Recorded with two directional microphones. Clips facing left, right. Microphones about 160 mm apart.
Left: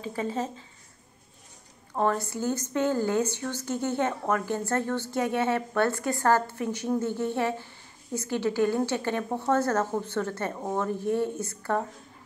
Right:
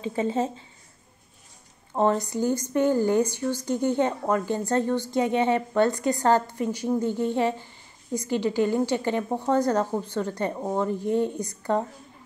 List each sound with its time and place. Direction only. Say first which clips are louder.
0.0 s speech: right 5 dB; 25° right (ahead or behind)
2.0 s a woman's voice: right 4 dB; 20° right (ahead or behind)